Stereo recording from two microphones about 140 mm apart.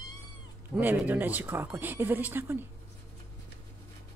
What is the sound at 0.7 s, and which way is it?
Speech, 10° right (ahead or behind).